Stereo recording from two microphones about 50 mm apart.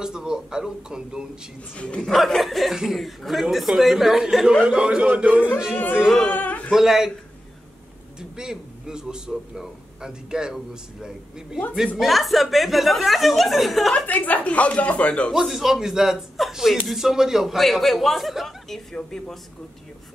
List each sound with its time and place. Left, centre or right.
0.0 s a man's voice: centre
2.0 s speech: centre
4.6 s a man's voice: right
6.3 s a sound: left
6.7 s a man's voice: centre
8.2 s a man's voice: centre
12.0 s speech: centre
14.0 s speech: left
15.3 s a man's voice: centre
18.9 s speech: centre